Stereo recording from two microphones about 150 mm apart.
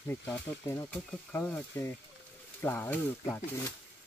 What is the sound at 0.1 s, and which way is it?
Speech, 15° left (ahead or behind).